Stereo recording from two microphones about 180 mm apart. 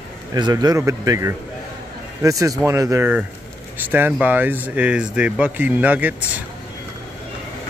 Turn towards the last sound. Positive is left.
turn(degrees=-10)  # may be behind; listen again after turning